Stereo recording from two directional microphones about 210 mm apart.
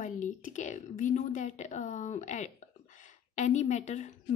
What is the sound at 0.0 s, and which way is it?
A woman's voice, 35° left (ahead or behind).